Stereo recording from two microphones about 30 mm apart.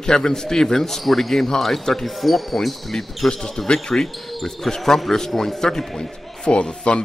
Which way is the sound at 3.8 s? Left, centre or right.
Centre.